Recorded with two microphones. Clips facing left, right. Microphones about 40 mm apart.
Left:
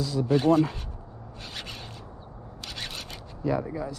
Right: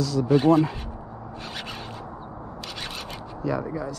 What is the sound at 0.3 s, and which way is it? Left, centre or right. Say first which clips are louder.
Speech: right 3 dB; centre.